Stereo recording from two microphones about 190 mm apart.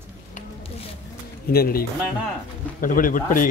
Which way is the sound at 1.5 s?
50° left (ahead or behind).